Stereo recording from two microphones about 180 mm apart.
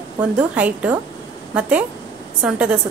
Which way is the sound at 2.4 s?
5° right (ahead or behind).